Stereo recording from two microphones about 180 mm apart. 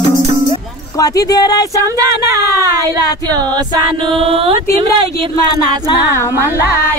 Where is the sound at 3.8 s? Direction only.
30° right (ahead or behind).